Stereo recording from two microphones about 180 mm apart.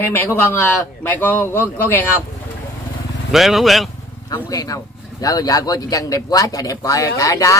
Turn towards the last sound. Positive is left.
turn(degrees=20)  # may be behind; listen again after turning